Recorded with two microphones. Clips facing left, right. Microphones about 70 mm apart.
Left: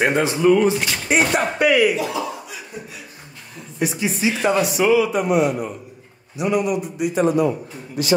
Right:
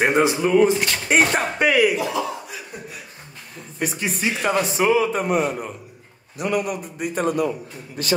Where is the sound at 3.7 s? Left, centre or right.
Right.